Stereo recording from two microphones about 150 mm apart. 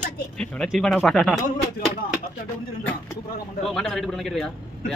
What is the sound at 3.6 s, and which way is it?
Speech, centre (ahead or behind).